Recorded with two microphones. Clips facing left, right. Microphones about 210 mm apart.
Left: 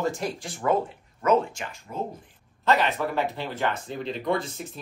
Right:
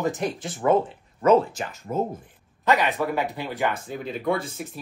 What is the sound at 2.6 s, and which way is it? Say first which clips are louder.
Speech: right 1 dB; 15° right (ahead or behind).